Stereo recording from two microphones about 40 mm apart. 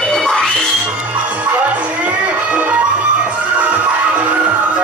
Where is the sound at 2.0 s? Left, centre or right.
Right.